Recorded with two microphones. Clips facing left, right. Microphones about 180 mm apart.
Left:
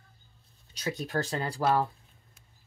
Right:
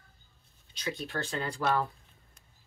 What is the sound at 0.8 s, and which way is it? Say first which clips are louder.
Speech: left 4 dB; 40° left (ahead or behind).